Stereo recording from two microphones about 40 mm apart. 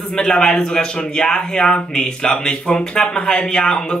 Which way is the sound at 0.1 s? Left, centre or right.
Left.